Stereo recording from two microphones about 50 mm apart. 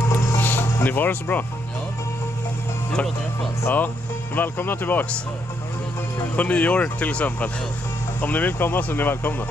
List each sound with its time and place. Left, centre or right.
0.4 s music: left
0.8 s speech: left
3.6 s speech: left
6.3 s speech: left